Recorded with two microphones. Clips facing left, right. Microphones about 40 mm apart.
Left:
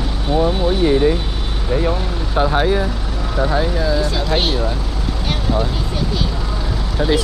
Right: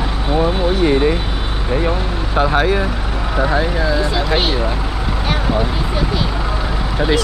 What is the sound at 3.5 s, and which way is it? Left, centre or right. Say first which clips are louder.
Speech: even; centre.